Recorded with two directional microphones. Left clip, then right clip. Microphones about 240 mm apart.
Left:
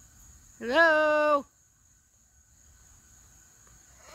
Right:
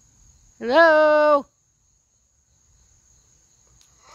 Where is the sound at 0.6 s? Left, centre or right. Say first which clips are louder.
Right 7 dB; centre.